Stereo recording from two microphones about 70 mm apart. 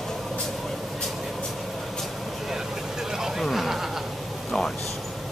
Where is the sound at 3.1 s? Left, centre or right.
Centre.